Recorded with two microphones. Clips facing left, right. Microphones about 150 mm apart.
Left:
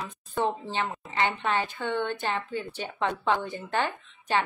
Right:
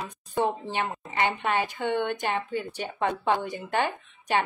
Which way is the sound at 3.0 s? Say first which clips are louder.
Right 1 dB; 50° right (ahead or behind).